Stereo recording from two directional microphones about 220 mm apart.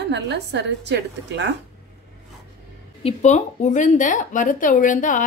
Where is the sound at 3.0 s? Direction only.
30° left (ahead or behind).